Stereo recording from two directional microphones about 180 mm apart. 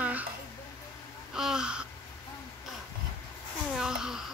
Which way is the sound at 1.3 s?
5° right (ahead or behind).